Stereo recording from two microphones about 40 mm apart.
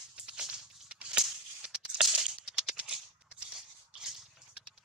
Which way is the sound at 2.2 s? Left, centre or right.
Centre.